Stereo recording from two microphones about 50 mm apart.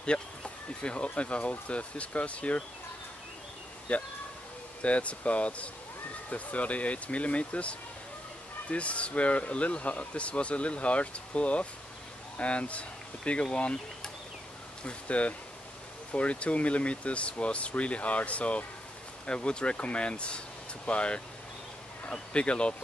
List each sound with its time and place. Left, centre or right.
0.0 s speech: centre
3.9 s speech: left
14.8 s speech: left